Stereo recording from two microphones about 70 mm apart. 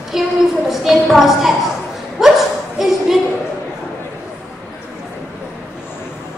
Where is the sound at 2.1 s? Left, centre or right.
Centre.